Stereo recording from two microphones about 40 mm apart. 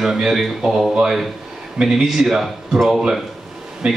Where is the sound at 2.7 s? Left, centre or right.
Centre.